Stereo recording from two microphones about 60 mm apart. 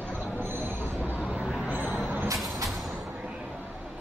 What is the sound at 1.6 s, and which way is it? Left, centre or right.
Vehicle, right.